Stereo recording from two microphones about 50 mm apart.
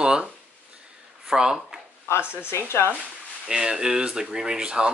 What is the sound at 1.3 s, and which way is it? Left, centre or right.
Speech, centre.